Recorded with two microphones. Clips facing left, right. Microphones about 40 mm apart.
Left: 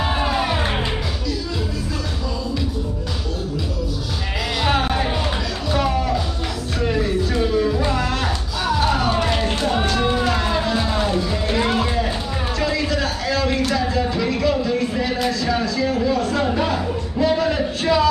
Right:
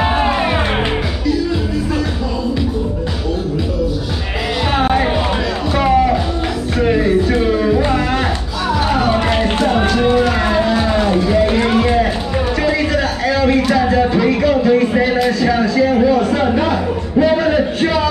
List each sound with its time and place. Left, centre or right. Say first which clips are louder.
0.0 s music: right 6 dB; right
4.7 s music: right 6 dB; right
12.6 s a sound: right 3 dB; right
13.8 s music: right 8 dB; right
15.2 s a sound: right 6 dB; right
17.2 s music: right 6 dB; right